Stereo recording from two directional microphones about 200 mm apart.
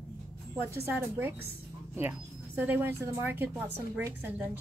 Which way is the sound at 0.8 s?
10° right (ahead or behind).